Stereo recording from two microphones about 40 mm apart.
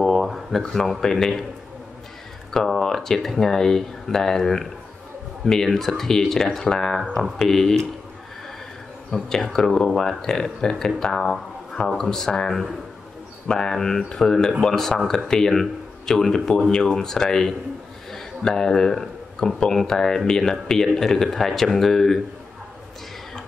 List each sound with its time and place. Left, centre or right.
0.0 s a sound: centre
0.6 s speech: centre
2.5 s speech: centre
9.1 s speech: centre